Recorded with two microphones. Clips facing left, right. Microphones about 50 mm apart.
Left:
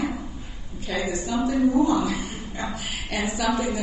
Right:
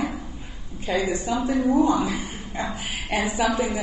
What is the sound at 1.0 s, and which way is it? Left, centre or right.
A woman's voice, right.